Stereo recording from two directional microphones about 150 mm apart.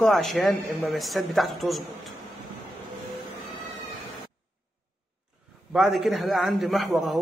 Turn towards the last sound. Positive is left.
turn(degrees=0)  # may be behind; listen again after turning